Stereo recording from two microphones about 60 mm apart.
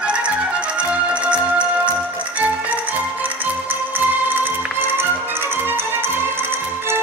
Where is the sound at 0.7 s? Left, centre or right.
Right.